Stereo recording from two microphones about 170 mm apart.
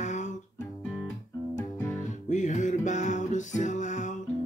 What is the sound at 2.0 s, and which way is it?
Music, 45° left (ahead or behind).